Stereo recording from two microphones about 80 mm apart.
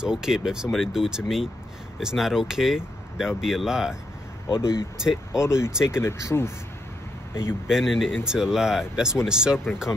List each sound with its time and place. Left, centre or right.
0.0 s speech: centre
4.6 s speech: left
4.9 s speech: centre
5.4 s speech: left
7.6 s speech: centre